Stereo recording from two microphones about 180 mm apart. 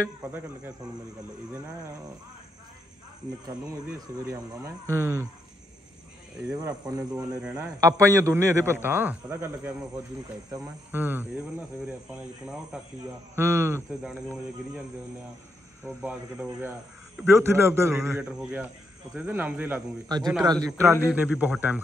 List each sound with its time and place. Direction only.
0.0 s a man's voice: 10° right (ahead or behind)
4.2 s a man's voice: 15° right (ahead or behind)
6.4 s a man's voice: 15° right (ahead or behind)
15.8 s a man's voice: 10° right (ahead or behind)
20.1 s a man's voice: 20° right (ahead or behind)